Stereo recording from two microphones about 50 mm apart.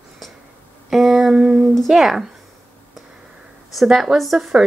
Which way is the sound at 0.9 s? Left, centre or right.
Centre.